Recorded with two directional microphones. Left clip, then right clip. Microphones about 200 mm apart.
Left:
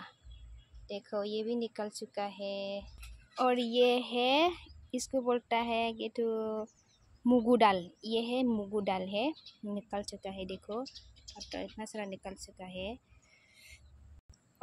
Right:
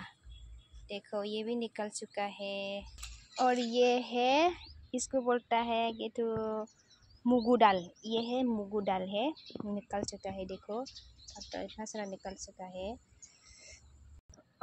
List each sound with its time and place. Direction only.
0.8 s a woman's voice: 10° left (ahead or behind)
12.7 s a woman's voice: centre (ahead or behind)